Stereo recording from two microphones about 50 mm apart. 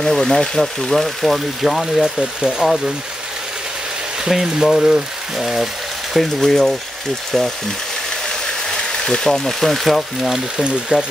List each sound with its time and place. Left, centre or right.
0.0 s speech: centre
2.1 s speech: centre
4.2 s speech: centre
6.1 s speech: centre
8.6 s speech: centre
10.3 s speech: centre